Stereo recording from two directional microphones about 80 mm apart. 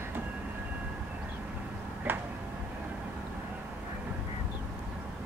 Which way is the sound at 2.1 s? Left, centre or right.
Right.